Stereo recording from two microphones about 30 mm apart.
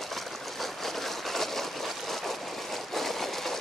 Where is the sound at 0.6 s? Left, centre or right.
Centre.